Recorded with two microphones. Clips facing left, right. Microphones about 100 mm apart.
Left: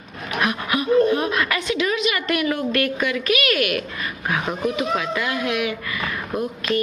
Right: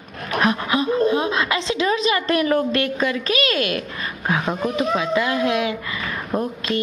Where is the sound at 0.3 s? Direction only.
30° right (ahead or behind).